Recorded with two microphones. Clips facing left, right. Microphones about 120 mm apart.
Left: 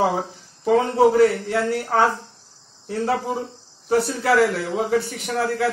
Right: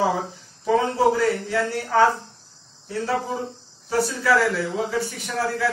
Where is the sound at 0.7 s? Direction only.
60° left (ahead or behind).